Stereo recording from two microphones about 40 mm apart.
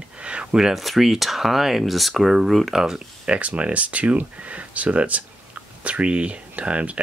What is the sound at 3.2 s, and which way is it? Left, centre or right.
Speech, right.